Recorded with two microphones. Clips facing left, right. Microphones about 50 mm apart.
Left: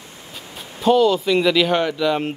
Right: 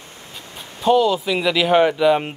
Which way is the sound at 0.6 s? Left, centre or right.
Centre.